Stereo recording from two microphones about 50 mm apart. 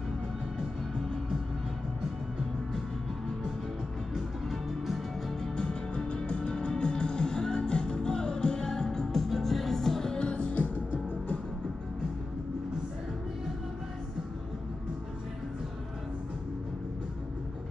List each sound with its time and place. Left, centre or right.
4.5 s music: centre
5.4 s music: centre; by 11.3 s left